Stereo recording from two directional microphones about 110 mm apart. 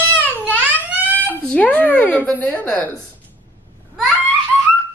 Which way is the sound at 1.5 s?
15° left (ahead or behind).